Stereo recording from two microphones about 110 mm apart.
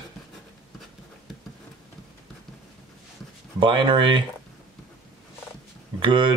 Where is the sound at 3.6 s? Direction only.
50° right (ahead or behind).